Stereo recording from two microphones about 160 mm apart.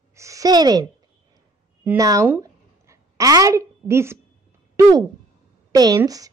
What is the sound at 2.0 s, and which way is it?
Speech, 20° right (ahead or behind).